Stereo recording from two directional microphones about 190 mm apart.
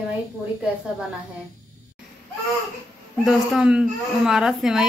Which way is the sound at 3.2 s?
Centre (ahead or behind).